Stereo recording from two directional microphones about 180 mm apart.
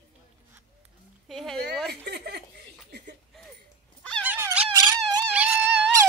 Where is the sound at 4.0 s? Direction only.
5° left (ahead or behind).